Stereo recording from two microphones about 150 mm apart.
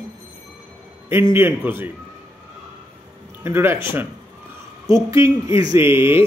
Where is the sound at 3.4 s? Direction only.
15° right (ahead or behind).